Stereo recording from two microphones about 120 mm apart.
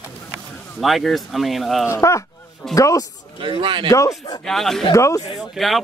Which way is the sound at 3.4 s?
45° right (ahead or behind).